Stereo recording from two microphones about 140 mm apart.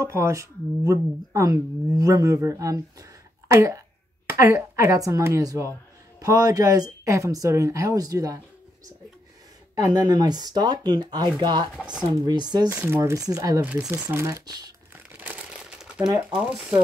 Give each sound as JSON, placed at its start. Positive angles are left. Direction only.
{"t": 0.0, "sound": "speech", "side_deg": -20}
{"t": 9.8, "sound": "speech", "side_deg": -30}
{"t": 11.7, "sound": "speech", "side_deg": -5}
{"t": 12.0, "sound": "speech", "side_deg": -30}
{"t": 12.6, "sound": "speech", "side_deg": -15}
{"t": 13.7, "sound": "speech", "side_deg": -5}
{"t": 14.0, "sound": "speech", "side_deg": -20}
{"t": 15.0, "sound": "crumpling", "side_deg": -10}
{"t": 16.3, "sound": "speech", "side_deg": -10}